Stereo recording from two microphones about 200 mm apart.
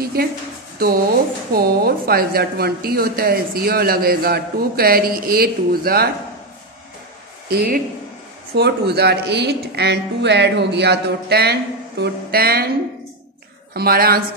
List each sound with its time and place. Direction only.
0.0 s a woman's voice: 50° right (ahead or behind)
1.5 s a woman's voice: 50° right (ahead or behind)
7.4 s a woman's voice: 50° right (ahead or behind)
13.7 s a woman's voice: 50° right (ahead or behind)